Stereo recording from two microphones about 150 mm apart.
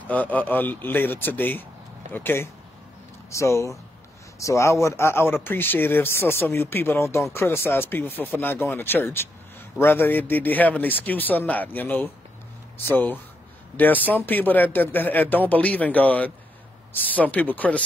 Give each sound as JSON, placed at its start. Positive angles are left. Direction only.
{"t": 0.0, "sound": "speech", "side_deg": 10}